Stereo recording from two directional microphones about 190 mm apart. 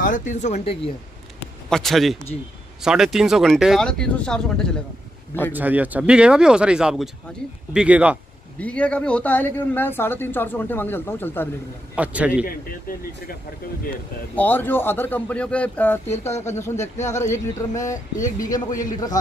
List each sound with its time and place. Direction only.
0.0 s speech: 40° left (ahead or behind)
1.7 s speech: centre (ahead or behind)
5.5 s a man's voice: 10° right (ahead or behind)
8.5 s speech: 5° left (ahead or behind)
11.9 s a man's voice: 5° right (ahead or behind)
12.4 s speech: 50° left (ahead or behind)
14.3 s speech: 10° left (ahead or behind)